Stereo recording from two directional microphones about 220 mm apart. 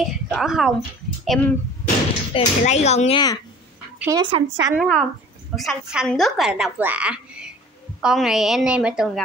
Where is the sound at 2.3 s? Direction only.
30° left (ahead or behind).